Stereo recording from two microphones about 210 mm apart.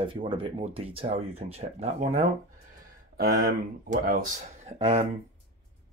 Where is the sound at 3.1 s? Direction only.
45° right (ahead or behind).